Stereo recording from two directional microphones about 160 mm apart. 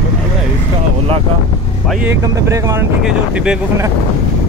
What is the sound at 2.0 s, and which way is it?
Speech, 20° right (ahead or behind).